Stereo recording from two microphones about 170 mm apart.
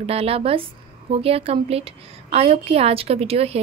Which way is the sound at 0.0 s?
35° right (ahead or behind).